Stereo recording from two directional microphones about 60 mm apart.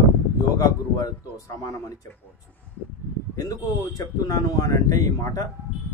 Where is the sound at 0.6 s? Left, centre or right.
Left.